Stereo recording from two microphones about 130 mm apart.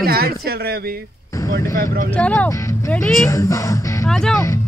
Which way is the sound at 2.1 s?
10° left (ahead or behind).